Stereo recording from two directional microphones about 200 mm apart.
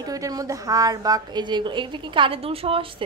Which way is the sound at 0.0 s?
20° right (ahead or behind).